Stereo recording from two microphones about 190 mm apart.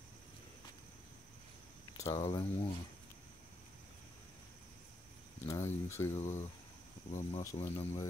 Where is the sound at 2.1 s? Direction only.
30° left (ahead or behind).